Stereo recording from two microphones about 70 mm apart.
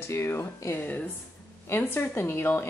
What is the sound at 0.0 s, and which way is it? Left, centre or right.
Speech, left.